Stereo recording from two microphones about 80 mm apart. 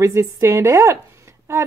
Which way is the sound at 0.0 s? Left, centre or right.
Right.